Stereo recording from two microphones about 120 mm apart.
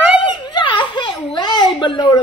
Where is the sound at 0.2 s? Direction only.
40° left (ahead or behind).